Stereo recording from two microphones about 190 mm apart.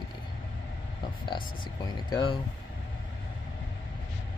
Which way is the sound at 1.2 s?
20° left (ahead or behind).